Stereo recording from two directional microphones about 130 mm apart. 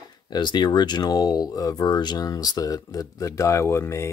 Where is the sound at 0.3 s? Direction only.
35° left (ahead or behind).